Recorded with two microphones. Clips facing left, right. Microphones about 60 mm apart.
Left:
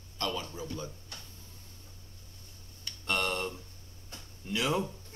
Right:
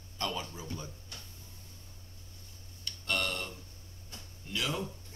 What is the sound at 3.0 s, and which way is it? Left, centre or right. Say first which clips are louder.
Tick-tock: left 3 dB; left.